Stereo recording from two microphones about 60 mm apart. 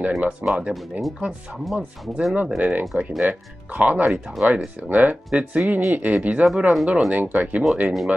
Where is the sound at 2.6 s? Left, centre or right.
Right.